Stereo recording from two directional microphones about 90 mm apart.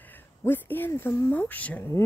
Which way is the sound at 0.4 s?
25° left (ahead or behind).